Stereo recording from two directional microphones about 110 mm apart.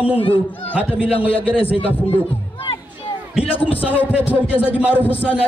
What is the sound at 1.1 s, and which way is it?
Speech, 60° left (ahead or behind).